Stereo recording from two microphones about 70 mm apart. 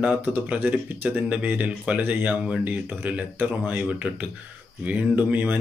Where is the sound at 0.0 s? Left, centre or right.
Centre.